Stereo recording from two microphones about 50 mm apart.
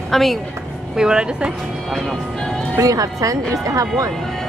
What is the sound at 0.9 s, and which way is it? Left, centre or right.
Speech, centre.